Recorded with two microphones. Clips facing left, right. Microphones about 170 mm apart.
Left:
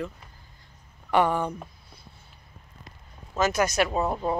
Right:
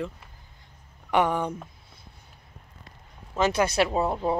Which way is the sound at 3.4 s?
30° right (ahead or behind).